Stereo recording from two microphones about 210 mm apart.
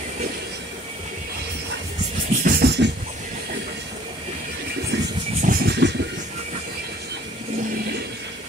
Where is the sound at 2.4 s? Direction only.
45° right (ahead or behind).